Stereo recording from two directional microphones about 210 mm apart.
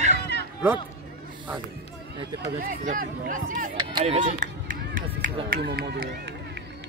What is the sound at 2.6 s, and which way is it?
A man's voice, 40° right (ahead or behind).